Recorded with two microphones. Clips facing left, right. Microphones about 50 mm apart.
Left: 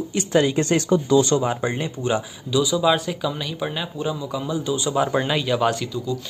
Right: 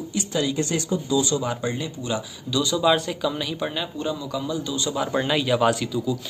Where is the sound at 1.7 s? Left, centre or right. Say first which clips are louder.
Left 4 dB; left.